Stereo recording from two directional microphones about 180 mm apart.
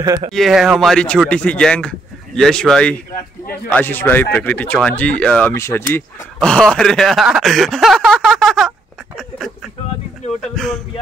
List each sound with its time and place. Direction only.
0.3 s speech: centre (ahead or behind)
10.5 s speech: centre (ahead or behind)